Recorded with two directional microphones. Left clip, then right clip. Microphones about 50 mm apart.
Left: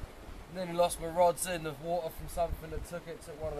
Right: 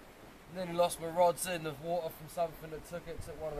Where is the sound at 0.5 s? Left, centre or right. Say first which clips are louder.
Left 2 dB; centre.